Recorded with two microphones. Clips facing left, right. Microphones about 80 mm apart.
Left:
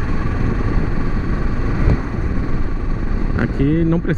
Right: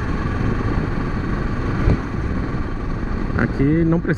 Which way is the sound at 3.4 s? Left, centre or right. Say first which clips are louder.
Even; right.